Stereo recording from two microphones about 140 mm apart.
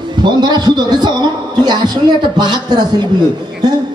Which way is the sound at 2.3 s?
30° right (ahead or behind).